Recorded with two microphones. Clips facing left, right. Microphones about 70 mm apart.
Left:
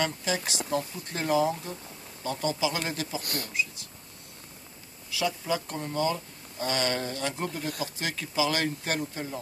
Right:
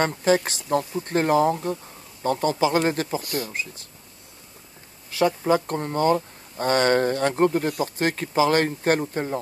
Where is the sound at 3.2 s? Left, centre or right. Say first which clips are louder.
Right 7 dB; left.